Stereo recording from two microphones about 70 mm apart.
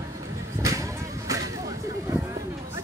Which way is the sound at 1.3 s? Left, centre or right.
Right.